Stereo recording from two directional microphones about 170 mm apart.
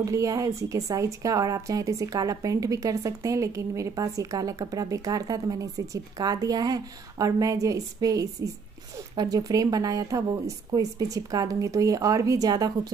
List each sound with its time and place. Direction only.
0.0 s a woman's voice: 20° right (ahead or behind)